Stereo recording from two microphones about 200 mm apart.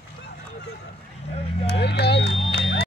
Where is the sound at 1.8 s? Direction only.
55° left (ahead or behind).